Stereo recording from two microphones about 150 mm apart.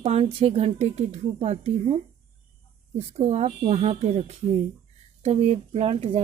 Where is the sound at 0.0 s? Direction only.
40° right (ahead or behind).